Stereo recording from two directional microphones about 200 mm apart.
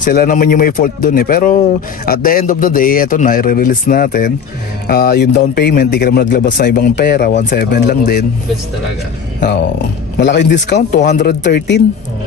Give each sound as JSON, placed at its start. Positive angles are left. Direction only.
{"t": 0.0, "sound": "a man's voice", "side_deg": 45}
{"t": 5.3, "sound": "speech", "side_deg": 35}
{"t": 5.6, "sound": "a man's voice", "side_deg": 55}
{"t": 7.8, "sound": "speech", "side_deg": 40}
{"t": 10.1, "sound": "a man's voice", "side_deg": 60}
{"t": 11.0, "sound": "speech", "side_deg": 40}
{"t": 11.2, "sound": "a man's voice", "side_deg": 55}